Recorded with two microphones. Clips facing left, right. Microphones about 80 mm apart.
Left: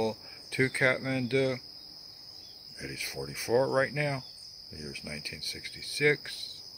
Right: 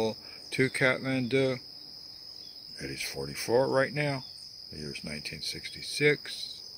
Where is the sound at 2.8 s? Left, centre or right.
Centre.